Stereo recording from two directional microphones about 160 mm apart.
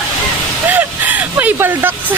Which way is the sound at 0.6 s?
10° right (ahead or behind).